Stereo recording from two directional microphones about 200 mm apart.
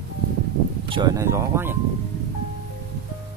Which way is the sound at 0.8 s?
25° right (ahead or behind).